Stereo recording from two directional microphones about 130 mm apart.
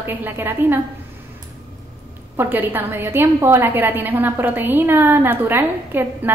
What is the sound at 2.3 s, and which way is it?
A woman's voice, 15° right (ahead or behind).